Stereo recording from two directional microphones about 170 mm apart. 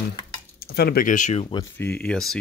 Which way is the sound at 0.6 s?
65° left (ahead or behind).